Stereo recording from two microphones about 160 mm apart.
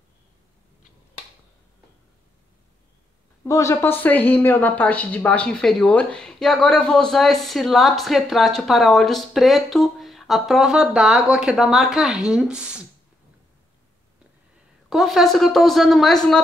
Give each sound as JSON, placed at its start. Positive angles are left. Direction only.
{"t": 3.4, "sound": "a woman's voice", "side_deg": 20}
{"t": 14.9, "sound": "a woman's voice", "side_deg": 0}